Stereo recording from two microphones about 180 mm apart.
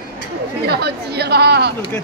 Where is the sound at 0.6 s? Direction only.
65° right (ahead or behind).